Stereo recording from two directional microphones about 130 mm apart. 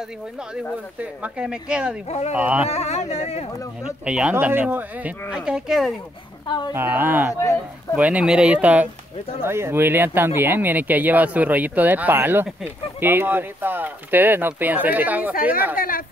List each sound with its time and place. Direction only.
1.2 s speech: 5° right (ahead or behind)
2.0 s a sound: 60° left (ahead or behind)
2.3 s speech: 10° right (ahead or behind)
2.7 s a sound: 55° left (ahead or behind)
3.8 s speech: 5° right (ahead or behind)
6.7 s speech: 15° right (ahead or behind)